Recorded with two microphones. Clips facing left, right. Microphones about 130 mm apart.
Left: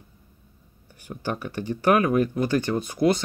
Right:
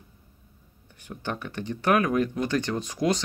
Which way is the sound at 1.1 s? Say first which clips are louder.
Left 3 dB; 20° left (ahead or behind).